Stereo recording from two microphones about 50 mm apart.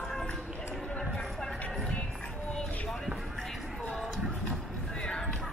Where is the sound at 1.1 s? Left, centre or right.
Centre.